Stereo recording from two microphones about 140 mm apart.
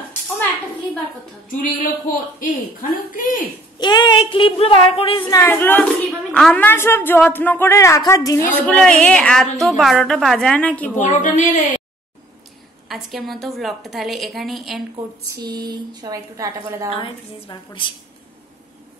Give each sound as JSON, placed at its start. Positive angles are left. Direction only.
{"t": 1.5, "sound": "music", "side_deg": 80}
{"t": 2.4, "sound": "a woman's voice", "side_deg": 75}
{"t": 3.3, "sound": "speech", "side_deg": 30}
{"t": 5.3, "sound": "a woman's voice", "side_deg": 20}
{"t": 8.5, "sound": "a woman's voice", "side_deg": 10}
{"t": 11.0, "sound": "a woman's voice", "side_deg": 60}
{"t": 12.8, "sound": "a woman's voice", "side_deg": 0}
{"t": 15.2, "sound": "a woman's voice", "side_deg": -30}
{"t": 16.9, "sound": "speech", "side_deg": 35}